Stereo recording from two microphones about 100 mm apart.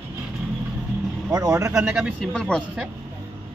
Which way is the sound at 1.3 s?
35° right (ahead or behind).